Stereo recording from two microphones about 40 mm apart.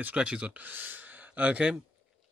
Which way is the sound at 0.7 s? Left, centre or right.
Right.